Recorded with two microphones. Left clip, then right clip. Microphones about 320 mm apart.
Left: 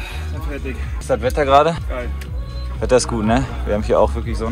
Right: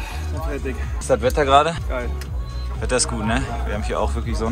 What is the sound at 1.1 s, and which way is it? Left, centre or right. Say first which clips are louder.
Speech: left 1 dB; centre.